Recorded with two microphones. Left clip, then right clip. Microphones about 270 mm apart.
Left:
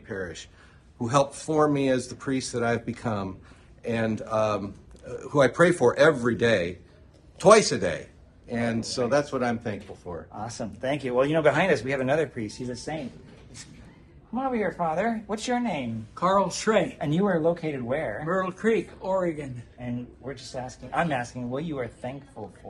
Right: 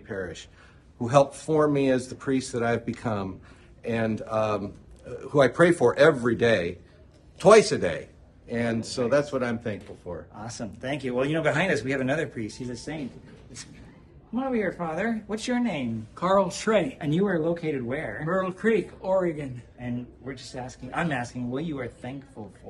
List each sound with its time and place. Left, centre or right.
0.1 s a man's voice: centre
10.3 s speech: left
14.3 s a man's voice: centre
18.3 s a man's voice: centre
20.3 s speech: centre